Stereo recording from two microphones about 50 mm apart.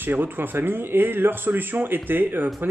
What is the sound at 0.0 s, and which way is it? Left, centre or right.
A man's voice, right.